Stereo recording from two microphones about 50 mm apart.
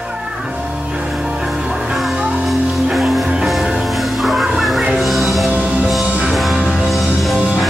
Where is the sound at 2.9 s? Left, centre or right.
Centre.